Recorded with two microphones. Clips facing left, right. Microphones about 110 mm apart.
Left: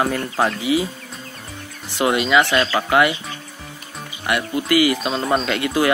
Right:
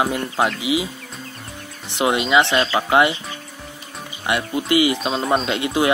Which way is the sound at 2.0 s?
20° right (ahead or behind).